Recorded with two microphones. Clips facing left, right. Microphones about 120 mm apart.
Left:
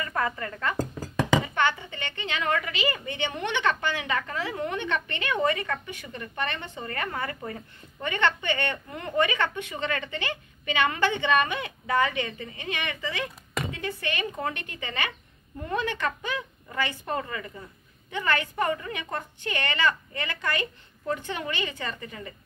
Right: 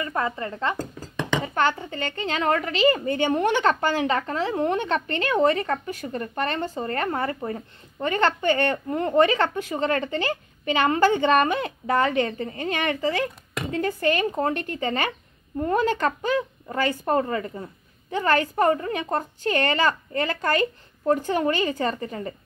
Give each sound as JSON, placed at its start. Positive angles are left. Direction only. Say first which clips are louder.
{"t": 0.0, "sound": "speech", "louder": "right 2 dB", "side_deg": -25}
{"t": 0.7, "sound": "a sound", "louder": "left 2 dB", "side_deg": 5}
{"t": 1.4, "sound": "speech", "louder": "right 3 dB", "side_deg": -40}